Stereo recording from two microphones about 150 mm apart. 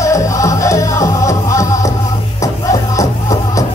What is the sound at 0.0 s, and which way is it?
Music, 20° left (ahead or behind).